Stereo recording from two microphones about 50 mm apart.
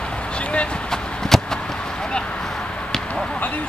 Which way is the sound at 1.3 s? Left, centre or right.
Centre.